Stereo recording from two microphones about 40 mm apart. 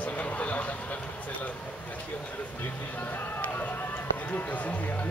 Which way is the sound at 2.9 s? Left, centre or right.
Left.